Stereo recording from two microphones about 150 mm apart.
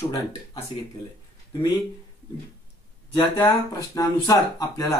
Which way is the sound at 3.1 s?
20° left (ahead or behind).